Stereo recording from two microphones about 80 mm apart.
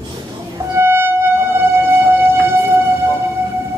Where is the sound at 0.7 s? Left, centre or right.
Right.